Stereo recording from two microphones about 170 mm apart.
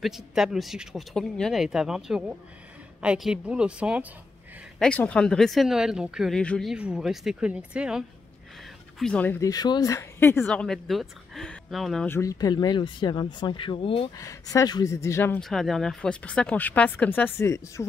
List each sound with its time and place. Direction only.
0.0 s speech: centre (ahead or behind)
4.7 s speech: 5° left (ahead or behind)
6.7 s speech: 5° right (ahead or behind)
9.0 s speech: 10° left (ahead or behind)
12.1 s speech: 20° left (ahead or behind)
14.1 s speech: 20° left (ahead or behind)
15.4 s speech: centre (ahead or behind)